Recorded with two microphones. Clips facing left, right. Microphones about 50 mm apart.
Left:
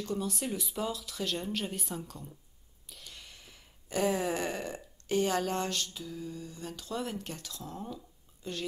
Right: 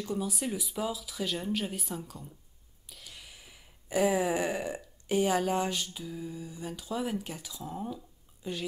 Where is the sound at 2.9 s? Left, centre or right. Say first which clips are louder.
Right 1 dB; centre.